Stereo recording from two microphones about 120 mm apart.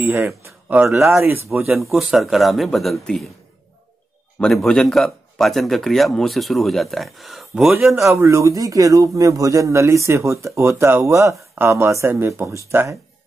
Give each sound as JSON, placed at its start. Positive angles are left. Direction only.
{"t": 0.0, "sound": "speech", "side_deg": -20}
{"t": 1.7, "sound": "a man's voice", "side_deg": -5}
{"t": 4.4, "sound": "a man's voice", "side_deg": 5}
{"t": 8.2, "sound": "speech", "side_deg": -25}